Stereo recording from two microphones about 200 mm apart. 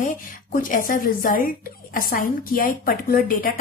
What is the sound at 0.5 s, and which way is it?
A woman's voice, 45° left (ahead or behind).